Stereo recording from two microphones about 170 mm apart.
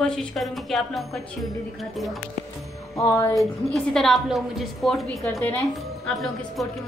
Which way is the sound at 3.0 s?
20° left (ahead or behind).